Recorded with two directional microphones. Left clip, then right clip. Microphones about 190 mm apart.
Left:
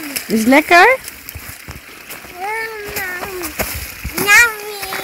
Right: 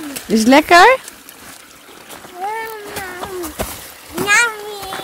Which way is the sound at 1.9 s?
10° right (ahead or behind).